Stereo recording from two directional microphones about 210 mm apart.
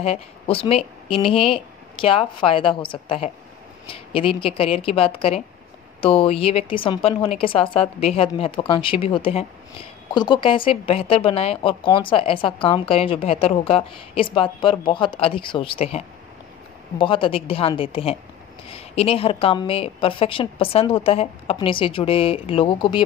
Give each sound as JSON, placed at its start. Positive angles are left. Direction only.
{"t": 0.0, "sound": "speech", "side_deg": 30}
{"t": 17.0, "sound": "speech", "side_deg": 25}